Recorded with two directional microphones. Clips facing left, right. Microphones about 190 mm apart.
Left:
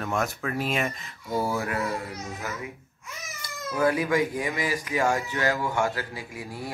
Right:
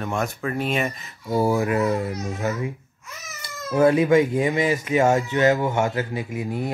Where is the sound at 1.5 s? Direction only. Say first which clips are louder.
Right 7 dB; 20° right (ahead or behind).